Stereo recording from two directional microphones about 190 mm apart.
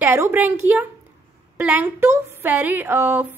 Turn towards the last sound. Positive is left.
turn(degrees=-10)  # may be behind; listen again after turning